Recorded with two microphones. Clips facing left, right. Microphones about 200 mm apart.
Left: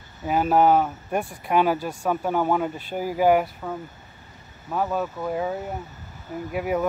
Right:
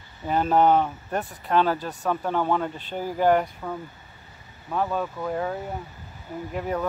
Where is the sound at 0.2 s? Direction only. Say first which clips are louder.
Left 1 dB; 5° left (ahead or behind).